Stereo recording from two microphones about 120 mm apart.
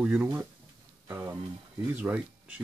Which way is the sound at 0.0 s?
15° right (ahead or behind).